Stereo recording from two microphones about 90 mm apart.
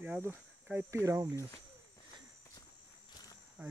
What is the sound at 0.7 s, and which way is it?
Speech, 35° right (ahead or behind).